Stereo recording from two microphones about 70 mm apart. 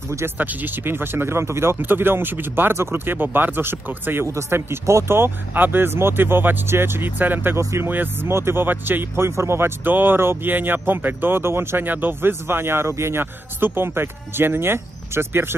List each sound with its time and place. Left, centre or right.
0.4 s speech: right